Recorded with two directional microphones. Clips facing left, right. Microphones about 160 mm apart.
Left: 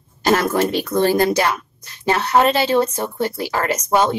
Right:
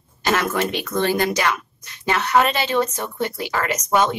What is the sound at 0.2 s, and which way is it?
Speech, 35° left (ahead or behind).